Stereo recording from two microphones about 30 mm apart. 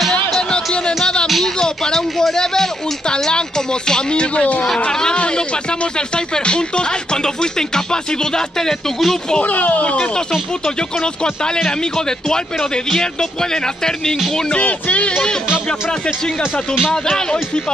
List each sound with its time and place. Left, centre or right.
1.6 s a sound: centre
2.3 s speech: centre
4.1 s speech: left; by 9.2 s centre
9.4 s speech: left
10.6 s speech: left
14.6 s speech: left